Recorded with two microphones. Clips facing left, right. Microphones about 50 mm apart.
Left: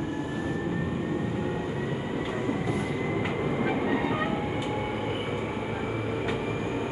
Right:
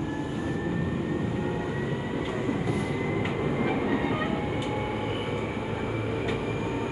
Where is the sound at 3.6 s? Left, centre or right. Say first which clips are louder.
Even; centre.